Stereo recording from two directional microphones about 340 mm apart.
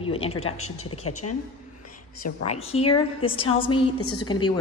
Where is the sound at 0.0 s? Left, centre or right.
Centre.